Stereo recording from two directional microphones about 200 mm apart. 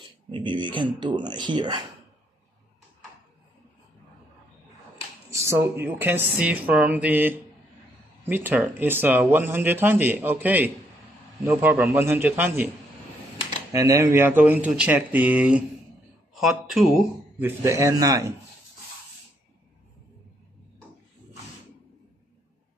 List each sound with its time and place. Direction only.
0.3 s speech: 25° right (ahead or behind)
5.3 s speech: 15° right (ahead or behind)
17.5 s speech: 15° right (ahead or behind)